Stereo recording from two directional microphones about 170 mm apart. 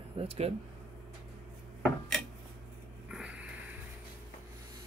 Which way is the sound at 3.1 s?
5° right (ahead or behind).